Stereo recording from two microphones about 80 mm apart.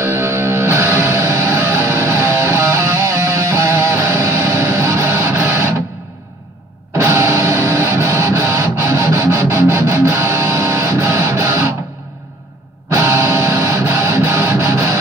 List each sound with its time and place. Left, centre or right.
0.0 s music: right
7.0 s music: right
12.9 s music: right